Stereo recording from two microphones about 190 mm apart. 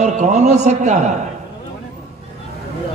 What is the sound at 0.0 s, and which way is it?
A man's voice, 35° right (ahead or behind).